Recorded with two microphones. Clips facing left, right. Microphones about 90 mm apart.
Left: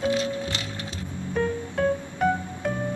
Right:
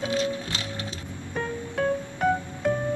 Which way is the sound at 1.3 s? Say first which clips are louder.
Left 3 dB; centre (ahead or behind).